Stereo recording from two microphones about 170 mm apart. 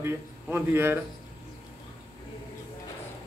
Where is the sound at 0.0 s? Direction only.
15° right (ahead or behind).